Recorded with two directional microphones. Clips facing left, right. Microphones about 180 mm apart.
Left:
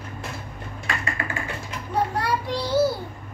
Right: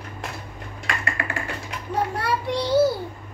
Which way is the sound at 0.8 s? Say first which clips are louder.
Right 1 dB; 75° right (ahead or behind).